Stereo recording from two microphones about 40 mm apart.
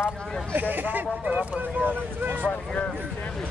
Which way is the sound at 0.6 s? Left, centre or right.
Right.